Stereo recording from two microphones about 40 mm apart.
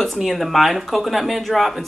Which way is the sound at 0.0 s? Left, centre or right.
Centre.